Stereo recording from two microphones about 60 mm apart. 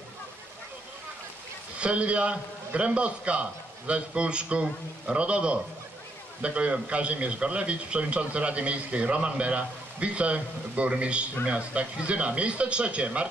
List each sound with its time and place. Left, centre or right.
1.8 s a man's voice: centre